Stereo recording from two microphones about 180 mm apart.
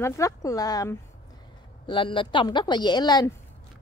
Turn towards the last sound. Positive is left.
turn(degrees=20)  # may be behind; listen again after turning